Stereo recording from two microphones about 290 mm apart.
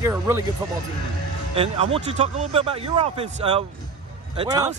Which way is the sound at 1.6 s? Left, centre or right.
Right.